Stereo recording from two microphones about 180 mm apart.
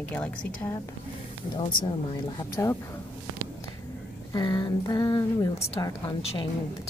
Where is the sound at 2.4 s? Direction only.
15° left (ahead or behind).